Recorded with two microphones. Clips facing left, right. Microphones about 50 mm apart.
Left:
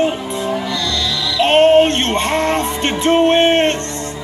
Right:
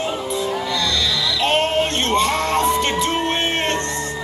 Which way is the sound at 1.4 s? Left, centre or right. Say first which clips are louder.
Left 10 dB; left.